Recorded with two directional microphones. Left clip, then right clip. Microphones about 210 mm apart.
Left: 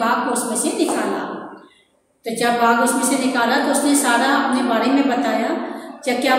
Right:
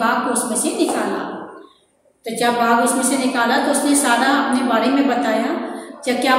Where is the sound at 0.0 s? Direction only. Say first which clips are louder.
Right 1 dB; 5° right (ahead or behind).